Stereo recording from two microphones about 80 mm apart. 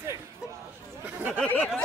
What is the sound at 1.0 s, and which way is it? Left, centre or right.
Chatter, right.